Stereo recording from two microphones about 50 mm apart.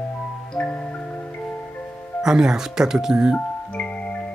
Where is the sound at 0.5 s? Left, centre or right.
Left.